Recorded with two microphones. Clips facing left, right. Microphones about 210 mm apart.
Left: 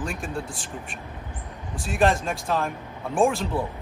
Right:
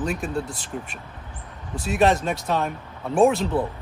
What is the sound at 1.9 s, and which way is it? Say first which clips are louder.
Speech: right 2 dB; centre (ahead or behind).